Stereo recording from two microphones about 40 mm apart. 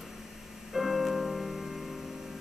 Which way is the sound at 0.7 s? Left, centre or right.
Centre.